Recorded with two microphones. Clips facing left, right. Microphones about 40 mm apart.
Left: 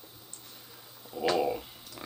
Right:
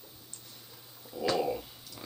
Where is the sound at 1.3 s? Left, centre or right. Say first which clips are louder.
Left 2 dB; centre.